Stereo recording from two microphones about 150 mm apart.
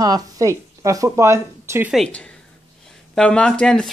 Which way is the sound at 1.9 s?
5° left (ahead or behind).